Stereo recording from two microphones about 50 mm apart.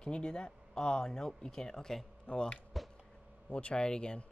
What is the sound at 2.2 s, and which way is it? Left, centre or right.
A man's voice, left.